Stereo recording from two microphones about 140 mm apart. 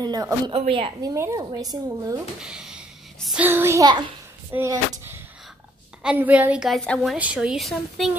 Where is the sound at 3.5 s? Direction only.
20° right (ahead or behind).